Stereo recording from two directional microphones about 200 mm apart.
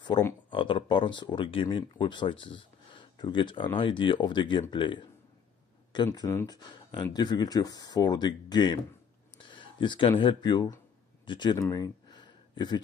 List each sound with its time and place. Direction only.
0.5 s speech: 25° left (ahead or behind)
6.0 s speech: 15° left (ahead or behind)
11.2 s a sound: 20° left (ahead or behind)